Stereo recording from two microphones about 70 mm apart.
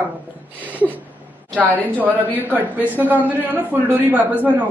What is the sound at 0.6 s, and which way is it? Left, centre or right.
A man's voice, right.